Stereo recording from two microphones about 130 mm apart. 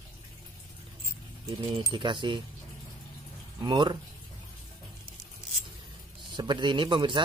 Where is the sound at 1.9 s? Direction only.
40° right (ahead or behind).